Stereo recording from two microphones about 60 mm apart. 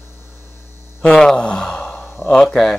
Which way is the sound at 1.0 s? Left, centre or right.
Centre.